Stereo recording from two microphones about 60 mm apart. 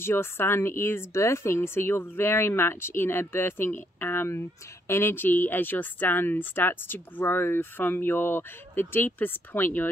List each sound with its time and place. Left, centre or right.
0.0 s speech: left